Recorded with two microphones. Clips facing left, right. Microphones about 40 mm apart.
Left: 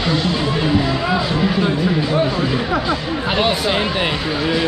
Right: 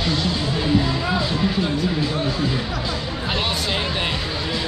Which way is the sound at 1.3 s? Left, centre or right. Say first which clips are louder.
Left 4 dB; left.